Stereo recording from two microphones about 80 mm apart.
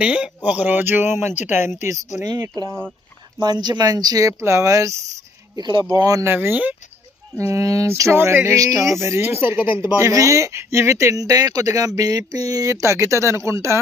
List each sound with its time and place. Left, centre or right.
0.0 s speech: centre
3.3 s speech: right
5.6 s speech: right
5.9 s speech: right
6.2 s speech: right
7.3 s speech: right
7.9 s speech: right
9.9 s speech: right